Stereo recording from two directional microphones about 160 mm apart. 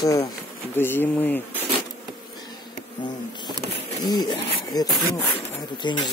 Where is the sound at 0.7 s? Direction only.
15° left (ahead or behind).